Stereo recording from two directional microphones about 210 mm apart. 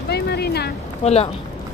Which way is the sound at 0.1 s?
50° left (ahead or behind).